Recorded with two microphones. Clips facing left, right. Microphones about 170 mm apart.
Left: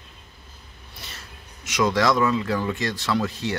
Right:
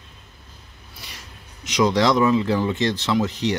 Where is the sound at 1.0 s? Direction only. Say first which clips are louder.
Even; 15° right (ahead or behind).